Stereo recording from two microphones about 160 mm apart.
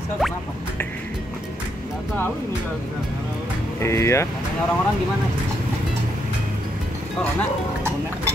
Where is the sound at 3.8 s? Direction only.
15° left (ahead or behind).